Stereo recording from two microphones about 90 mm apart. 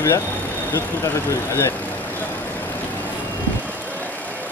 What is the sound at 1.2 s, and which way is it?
Speech, 30° left (ahead or behind).